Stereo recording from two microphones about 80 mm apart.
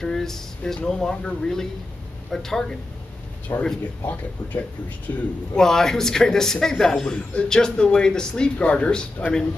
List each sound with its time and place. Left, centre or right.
0.0 s a man's voice: centre
3.5 s speech: left
4.0 s a man's voice: left
5.6 s a man's voice: centre